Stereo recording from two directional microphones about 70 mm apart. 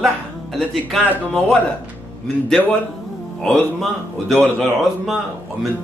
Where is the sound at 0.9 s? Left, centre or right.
Centre.